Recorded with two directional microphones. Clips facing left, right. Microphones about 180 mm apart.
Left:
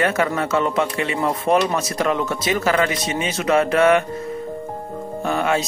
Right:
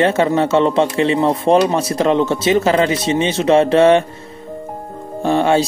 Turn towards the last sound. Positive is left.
turn(degrees=-30)  # may be behind; listen again after turning